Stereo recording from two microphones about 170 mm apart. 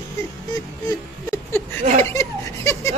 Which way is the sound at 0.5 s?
20° left (ahead or behind).